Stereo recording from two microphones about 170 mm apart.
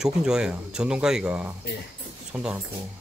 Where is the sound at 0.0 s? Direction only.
5° right (ahead or behind).